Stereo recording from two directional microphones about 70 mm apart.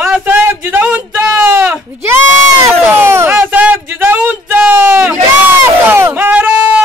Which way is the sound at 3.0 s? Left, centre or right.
Right.